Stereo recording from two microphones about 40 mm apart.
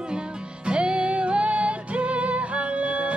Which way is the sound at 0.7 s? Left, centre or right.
Right.